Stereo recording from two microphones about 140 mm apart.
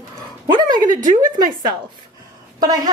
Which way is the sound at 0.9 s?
70° right (ahead or behind).